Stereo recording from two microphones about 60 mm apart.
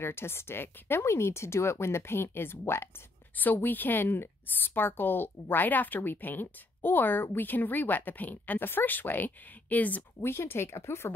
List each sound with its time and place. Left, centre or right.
0.0 s a woman's voice: left
10.2 s speech: left